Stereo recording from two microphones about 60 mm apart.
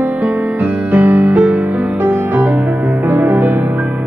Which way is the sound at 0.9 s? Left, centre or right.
Right.